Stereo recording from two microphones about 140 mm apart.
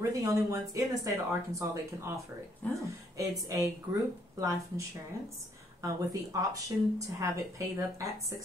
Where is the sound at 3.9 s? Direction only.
30° right (ahead or behind).